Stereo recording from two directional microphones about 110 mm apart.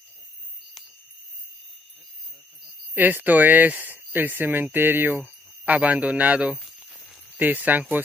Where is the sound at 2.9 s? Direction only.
15° right (ahead or behind).